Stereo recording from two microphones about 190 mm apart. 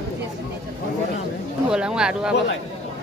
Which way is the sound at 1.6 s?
5° right (ahead or behind).